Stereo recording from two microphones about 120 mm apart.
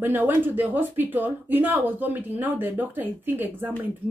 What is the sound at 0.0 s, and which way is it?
A woman's voice, 15° right (ahead or behind).